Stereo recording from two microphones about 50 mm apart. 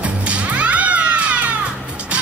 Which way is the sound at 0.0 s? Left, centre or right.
Right.